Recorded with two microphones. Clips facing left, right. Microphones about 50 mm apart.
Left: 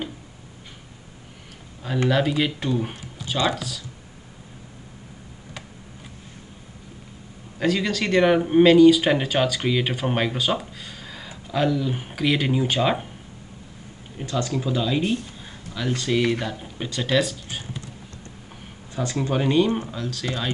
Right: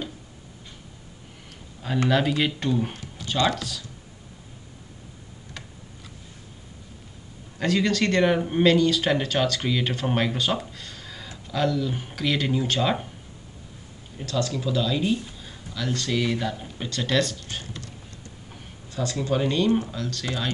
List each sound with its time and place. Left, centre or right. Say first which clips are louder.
2.0 s speech: left 1 dB; centre
7.5 s speech: even; centre
14.1 s speech: left 1 dB; left
16.4 s speech: even; centre
18.9 s speech: left 1 dB; left; by 20.4 s centre